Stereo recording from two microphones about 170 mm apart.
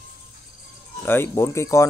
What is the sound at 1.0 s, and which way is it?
Speech, 15° left (ahead or behind).